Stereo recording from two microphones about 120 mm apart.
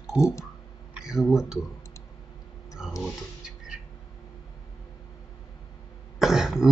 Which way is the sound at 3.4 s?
5° right (ahead or behind).